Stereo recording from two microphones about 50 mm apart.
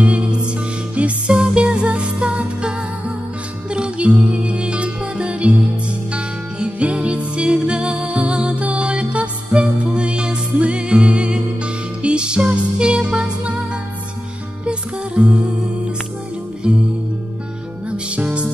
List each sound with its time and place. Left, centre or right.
0.0 s music: right
3.7 s music: right
14.7 s music: right
16.6 s music: centre
17.8 s music: right